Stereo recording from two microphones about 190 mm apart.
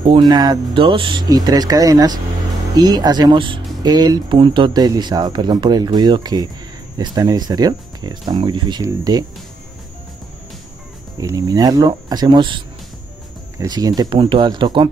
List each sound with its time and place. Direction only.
0.0 s speech: 25° right (ahead or behind)
11.1 s speech: 20° right (ahead or behind)